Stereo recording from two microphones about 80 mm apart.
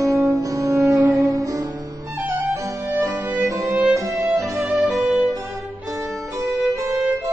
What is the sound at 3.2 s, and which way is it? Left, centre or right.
Violin, right.